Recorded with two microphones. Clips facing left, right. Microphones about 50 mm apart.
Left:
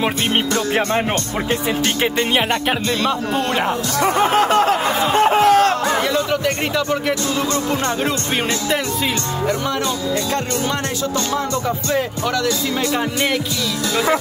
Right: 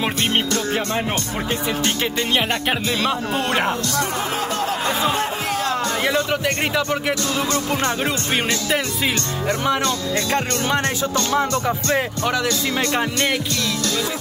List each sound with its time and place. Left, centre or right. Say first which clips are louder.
0.5 s speech: left 4 dB; left
4.2 s music: left 9 dB; left
6.4 s speech: left 1 dB; centre